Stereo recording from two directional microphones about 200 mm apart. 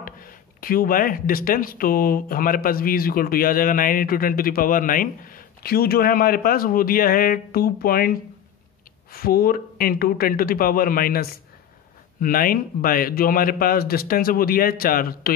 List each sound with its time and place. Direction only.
0.0 s speech: 45° left (ahead or behind)